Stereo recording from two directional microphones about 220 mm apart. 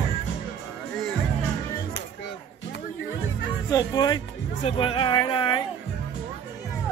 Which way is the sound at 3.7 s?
20° left (ahead or behind).